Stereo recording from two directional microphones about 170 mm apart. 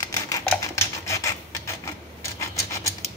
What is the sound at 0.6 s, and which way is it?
Typewriter, 20° left (ahead or behind).